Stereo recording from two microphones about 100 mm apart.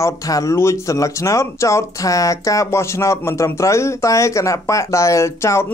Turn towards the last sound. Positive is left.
turn(degrees=30)  # may be behind; listen again after turning